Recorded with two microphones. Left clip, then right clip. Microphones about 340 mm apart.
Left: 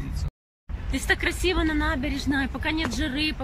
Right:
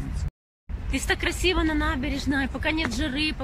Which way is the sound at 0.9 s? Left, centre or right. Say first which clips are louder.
Left 1 dB; centre.